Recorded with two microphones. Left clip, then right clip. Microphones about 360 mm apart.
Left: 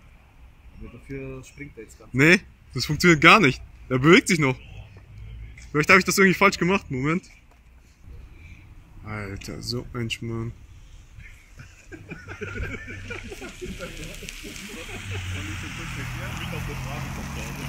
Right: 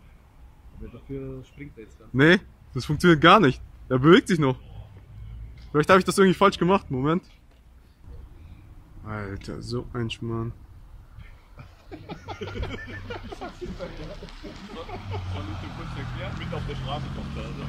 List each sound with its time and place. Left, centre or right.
2.1 s speech: centre
5.7 s speech: centre
9.0 s speech: centre
12.1 s a sound: right